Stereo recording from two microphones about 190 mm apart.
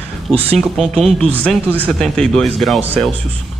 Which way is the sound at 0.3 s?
30° right (ahead or behind).